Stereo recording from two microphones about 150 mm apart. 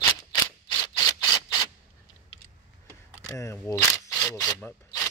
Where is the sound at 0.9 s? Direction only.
25° left (ahead or behind).